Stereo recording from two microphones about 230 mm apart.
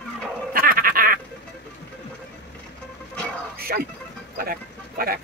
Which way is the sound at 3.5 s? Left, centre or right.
Right.